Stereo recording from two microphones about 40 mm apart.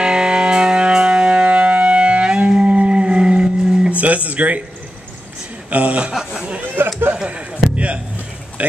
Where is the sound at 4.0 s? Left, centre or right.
Right.